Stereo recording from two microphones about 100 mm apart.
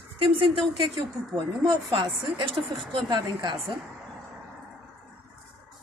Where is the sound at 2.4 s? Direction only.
Centre (ahead or behind).